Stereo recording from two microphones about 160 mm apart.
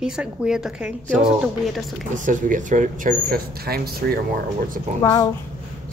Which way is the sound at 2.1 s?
55° right (ahead or behind).